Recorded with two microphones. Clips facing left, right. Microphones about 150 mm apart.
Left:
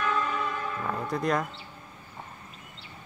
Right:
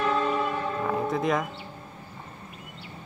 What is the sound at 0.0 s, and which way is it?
Train, 30° right (ahead or behind).